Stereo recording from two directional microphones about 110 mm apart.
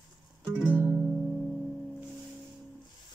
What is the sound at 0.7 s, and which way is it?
Music, 20° left (ahead or behind).